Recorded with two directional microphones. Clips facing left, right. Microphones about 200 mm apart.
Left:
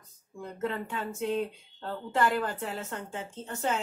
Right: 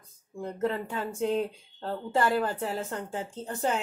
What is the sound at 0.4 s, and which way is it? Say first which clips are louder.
Speech: right 4 dB; 35° right (ahead or behind).